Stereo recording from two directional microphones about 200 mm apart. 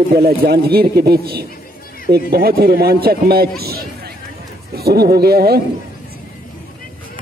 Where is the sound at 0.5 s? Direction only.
50° right (ahead or behind).